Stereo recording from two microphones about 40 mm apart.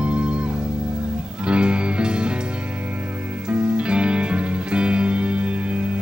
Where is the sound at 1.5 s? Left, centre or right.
Right.